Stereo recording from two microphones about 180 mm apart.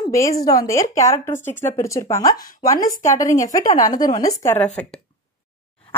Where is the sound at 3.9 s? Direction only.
20° left (ahead or behind).